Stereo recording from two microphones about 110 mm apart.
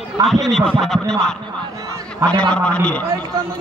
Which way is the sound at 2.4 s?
10° left (ahead or behind).